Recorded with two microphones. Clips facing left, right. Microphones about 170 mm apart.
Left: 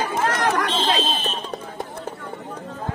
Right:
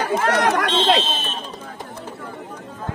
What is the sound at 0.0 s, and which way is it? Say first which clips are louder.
Speech: right 3 dB; 70° right (ahead or behind).